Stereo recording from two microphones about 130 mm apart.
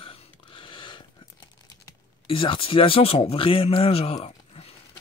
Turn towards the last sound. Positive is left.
turn(degrees=50)  # may be behind; listen again after turning